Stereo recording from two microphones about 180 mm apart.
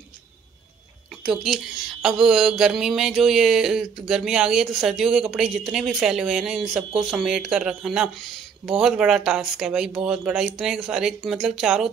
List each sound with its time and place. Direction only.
1.2 s speech: centre (ahead or behind)